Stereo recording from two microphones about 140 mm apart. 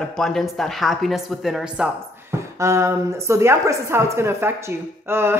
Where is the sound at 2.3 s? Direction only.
20° right (ahead or behind).